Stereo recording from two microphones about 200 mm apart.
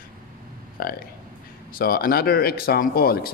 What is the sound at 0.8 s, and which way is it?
Speech, 50° left (ahead or behind).